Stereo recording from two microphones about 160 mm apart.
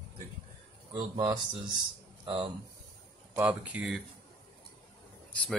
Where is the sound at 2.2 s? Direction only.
35° right (ahead or behind).